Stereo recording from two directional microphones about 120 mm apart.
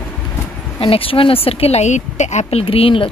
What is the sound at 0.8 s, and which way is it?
A woman's voice, 50° left (ahead or behind).